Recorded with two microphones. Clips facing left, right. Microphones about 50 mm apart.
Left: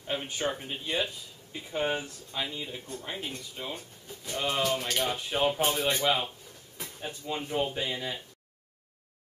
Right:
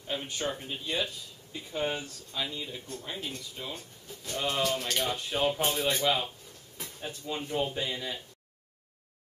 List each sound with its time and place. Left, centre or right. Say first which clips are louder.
0.0 s speech: left 2 dB; left
4.3 s speech: left 1 dB; centre